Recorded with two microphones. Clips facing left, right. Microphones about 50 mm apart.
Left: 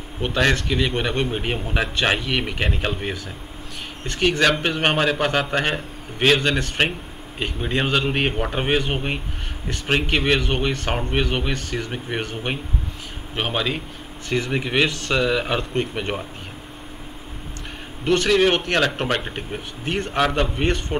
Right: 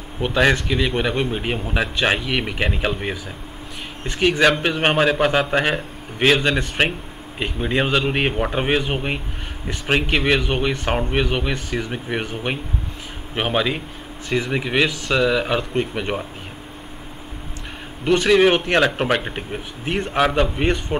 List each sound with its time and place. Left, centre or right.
0.4 s speech: centre
11.5 s speech: centre
11.9 s speech: centre
13.3 s speech: centre
18.1 s speech: centre